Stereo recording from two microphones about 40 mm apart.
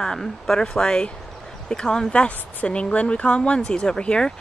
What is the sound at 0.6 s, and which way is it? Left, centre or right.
Speech, centre.